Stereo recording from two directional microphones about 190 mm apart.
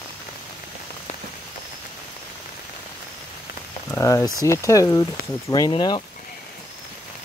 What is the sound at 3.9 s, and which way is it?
Speech, 15° left (ahead or behind).